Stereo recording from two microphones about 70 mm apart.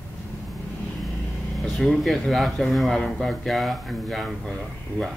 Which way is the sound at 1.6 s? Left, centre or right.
Centre.